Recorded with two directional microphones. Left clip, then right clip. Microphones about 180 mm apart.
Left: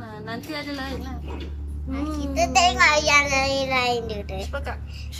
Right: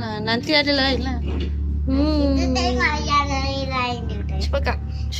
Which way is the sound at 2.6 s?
65° left (ahead or behind).